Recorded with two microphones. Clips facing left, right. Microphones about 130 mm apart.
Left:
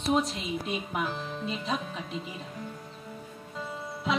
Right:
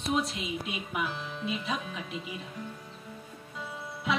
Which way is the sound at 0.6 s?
35° left (ahead or behind).